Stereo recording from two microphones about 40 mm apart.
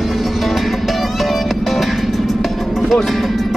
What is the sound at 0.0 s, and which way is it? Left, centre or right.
Music, centre.